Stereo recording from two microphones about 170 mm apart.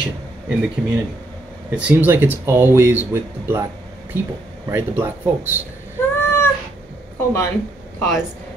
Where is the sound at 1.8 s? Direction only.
10° right (ahead or behind).